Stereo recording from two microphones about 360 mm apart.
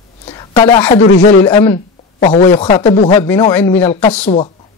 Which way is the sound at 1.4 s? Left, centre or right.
Centre.